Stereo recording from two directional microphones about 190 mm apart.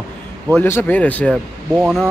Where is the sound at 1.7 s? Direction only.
5° right (ahead or behind).